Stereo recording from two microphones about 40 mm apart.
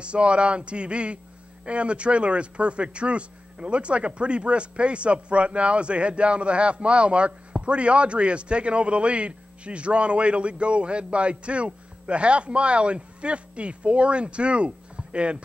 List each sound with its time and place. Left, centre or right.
0.0 s speech: right